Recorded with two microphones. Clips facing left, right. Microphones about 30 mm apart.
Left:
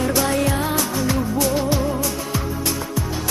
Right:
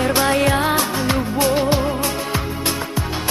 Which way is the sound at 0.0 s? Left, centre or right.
Right.